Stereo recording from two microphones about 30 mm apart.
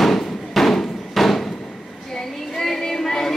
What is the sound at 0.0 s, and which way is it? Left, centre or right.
Hammer, centre.